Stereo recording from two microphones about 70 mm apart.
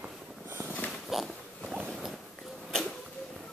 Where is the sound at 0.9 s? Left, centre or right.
Centre.